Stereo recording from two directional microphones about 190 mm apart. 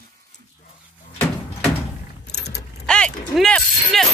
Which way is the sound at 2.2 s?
60° left (ahead or behind).